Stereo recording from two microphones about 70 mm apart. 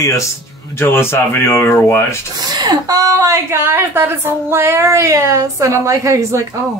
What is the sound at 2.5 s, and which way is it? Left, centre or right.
A woman's voice, right.